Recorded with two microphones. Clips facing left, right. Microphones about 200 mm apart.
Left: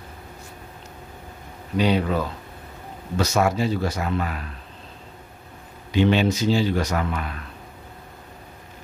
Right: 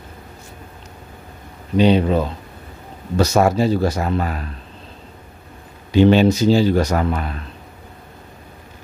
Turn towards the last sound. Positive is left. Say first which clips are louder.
# right 6 dB
turn(degrees=-35)  # may be behind; listen again after turning